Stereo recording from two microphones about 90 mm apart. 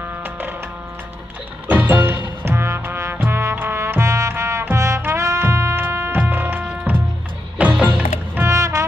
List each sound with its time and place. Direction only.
1.7 s music: 20° right (ahead or behind)
8.5 s music: 35° right (ahead or behind)